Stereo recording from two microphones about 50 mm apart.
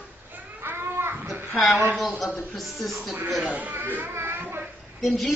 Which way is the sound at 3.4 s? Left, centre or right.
Right.